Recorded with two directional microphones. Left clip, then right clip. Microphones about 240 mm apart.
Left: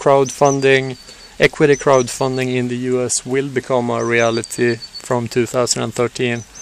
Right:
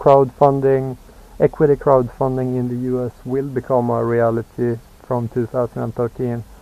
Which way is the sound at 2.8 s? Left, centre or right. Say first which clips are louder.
Left 4 dB; left.